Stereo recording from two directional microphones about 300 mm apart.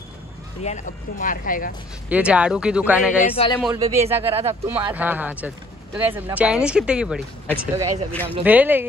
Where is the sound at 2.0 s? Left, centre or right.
Centre.